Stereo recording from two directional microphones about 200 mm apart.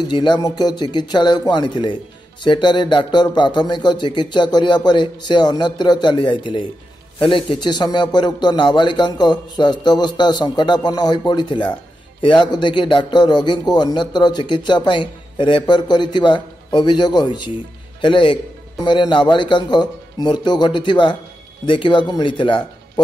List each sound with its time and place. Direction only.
0.0 s speech: 20° left (ahead or behind)